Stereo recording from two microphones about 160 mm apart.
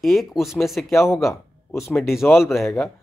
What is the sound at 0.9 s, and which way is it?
Speech, 15° left (ahead or behind).